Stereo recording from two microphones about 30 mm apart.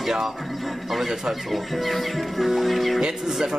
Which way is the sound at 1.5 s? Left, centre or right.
Centre.